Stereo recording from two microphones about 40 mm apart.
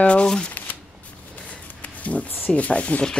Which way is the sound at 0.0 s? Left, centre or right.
Left.